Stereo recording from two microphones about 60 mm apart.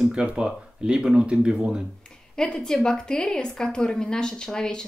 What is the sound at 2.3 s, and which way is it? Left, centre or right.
A woman's voice, centre.